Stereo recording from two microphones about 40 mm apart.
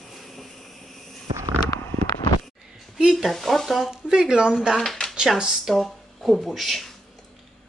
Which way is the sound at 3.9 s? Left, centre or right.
Centre.